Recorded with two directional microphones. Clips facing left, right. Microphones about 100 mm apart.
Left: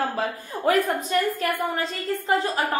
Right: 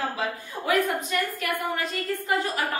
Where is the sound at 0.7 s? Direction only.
40° left (ahead or behind).